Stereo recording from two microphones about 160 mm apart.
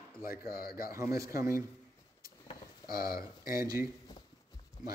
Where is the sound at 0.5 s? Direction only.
70° left (ahead or behind).